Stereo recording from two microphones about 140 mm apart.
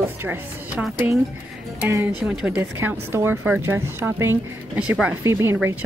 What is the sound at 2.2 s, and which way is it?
A woman's voice, 5° right (ahead or behind).